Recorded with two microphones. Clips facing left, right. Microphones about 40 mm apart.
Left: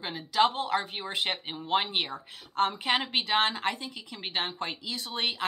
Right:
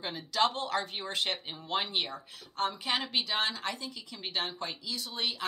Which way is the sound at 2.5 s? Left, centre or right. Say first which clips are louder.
Left 5 dB; left.